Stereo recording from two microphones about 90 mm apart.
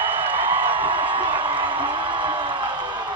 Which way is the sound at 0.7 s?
75° right (ahead or behind).